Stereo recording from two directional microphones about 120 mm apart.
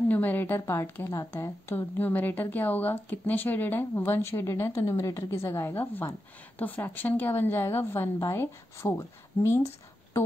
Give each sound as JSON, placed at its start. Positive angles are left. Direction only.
{"t": 0.1, "sound": "a woman's voice", "side_deg": 15}